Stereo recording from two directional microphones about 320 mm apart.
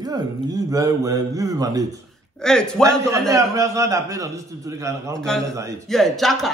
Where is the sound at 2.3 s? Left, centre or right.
Centre.